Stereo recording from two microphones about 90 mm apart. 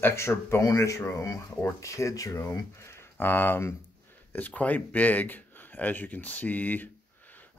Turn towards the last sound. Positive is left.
turn(degrees=20)  # may be behind; listen again after turning